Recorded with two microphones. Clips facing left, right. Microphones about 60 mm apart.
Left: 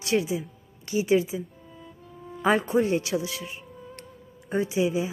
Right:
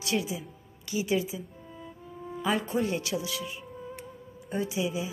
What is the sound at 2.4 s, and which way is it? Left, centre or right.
A woman's voice, left.